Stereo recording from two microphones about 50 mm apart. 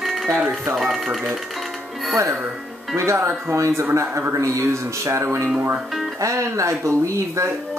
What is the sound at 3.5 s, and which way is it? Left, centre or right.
Speech, right.